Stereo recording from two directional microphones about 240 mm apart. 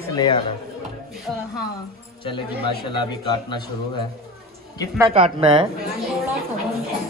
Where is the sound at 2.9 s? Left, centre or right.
Centre.